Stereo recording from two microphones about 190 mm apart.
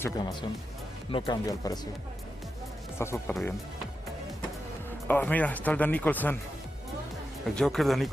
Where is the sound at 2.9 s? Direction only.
15° left (ahead or behind).